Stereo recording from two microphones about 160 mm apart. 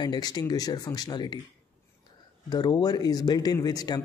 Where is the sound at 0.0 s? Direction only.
25° left (ahead or behind).